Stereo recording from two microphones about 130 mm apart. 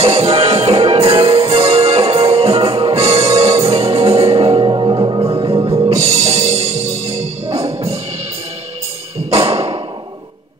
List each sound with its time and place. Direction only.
0.0 s music: 50° right (ahead or behind); by 5.5 s 35° right (ahead or behind)
5.5 s music: 45° right (ahead or behind)
9.3 s thump: 50° right (ahead or behind)